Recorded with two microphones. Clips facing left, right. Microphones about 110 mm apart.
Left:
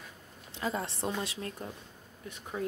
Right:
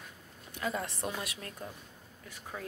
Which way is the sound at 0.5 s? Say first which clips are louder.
Left 1 dB; 25° left (ahead or behind).